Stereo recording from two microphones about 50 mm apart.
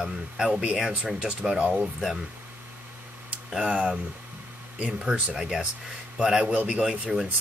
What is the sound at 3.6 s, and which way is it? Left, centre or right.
Speech, right.